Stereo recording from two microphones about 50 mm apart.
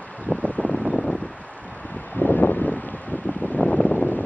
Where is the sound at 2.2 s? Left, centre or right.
Left.